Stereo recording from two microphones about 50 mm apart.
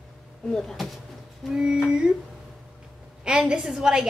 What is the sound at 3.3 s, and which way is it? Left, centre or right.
Speech, centre.